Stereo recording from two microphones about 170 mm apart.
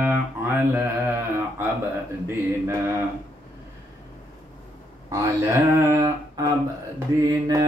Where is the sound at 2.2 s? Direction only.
15° right (ahead or behind).